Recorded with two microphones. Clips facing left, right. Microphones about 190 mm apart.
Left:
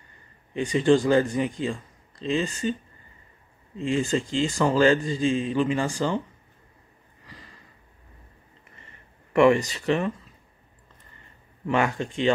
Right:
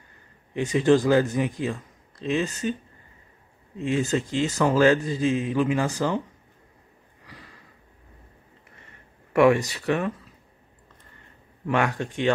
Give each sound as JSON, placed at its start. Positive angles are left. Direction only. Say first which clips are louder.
{"t": 0.6, "sound": "a man's voice", "louder": "even", "side_deg": -5}
{"t": 3.7, "sound": "a man's voice", "louder": "even", "side_deg": -5}
{"t": 9.3, "sound": "a man's voice", "louder": "even", "side_deg": 0}
{"t": 11.6, "sound": "a man's voice", "louder": "even", "side_deg": 0}
{"t": 12.0, "sound": "speech", "louder": "left 1 dB", "side_deg": -60}